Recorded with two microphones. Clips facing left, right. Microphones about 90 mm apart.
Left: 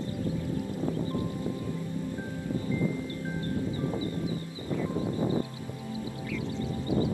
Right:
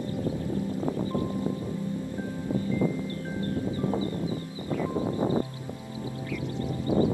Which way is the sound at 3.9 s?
35° right (ahead or behind).